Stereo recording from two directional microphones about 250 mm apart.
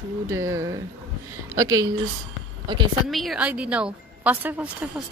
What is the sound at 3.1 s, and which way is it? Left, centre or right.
A woman's voice, centre.